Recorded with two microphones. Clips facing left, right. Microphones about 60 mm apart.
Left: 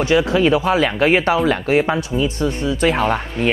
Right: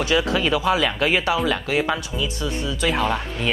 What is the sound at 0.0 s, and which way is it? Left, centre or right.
Speech, left.